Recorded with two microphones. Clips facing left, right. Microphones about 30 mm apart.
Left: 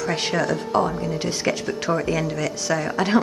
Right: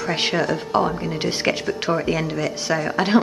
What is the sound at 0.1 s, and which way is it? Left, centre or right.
A woman's voice, right.